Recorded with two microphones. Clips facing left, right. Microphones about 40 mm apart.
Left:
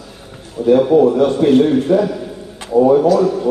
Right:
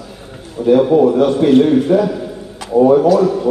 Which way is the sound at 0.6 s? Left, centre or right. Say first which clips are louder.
Even; centre.